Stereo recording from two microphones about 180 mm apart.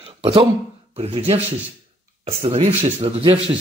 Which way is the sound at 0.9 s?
35° right (ahead or behind).